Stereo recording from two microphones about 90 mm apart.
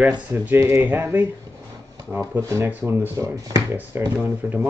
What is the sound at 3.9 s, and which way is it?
Speech, 25° right (ahead or behind).